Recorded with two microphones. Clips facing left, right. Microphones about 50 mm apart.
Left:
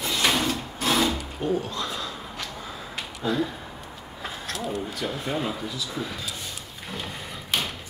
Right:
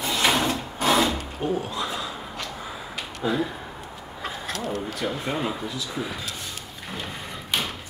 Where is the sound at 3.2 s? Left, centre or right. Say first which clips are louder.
Right 1 dB; centre.